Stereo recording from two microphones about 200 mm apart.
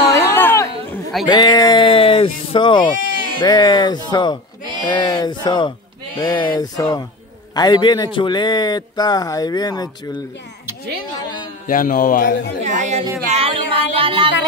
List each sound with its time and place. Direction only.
0.1 s a sound: 15° left (ahead or behind)
1.2 s speech: 20° left (ahead or behind)
2.9 s bleat: 40° left (ahead or behind)
3.3 s a man's voice: 20° left (ahead or behind)
11.6 s speech: 45° left (ahead or behind)
12.6 s speech: 35° right (ahead or behind)
13.3 s music: 30° right (ahead or behind)